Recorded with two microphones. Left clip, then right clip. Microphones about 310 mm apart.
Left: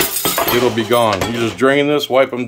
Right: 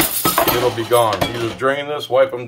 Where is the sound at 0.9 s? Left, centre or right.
Left.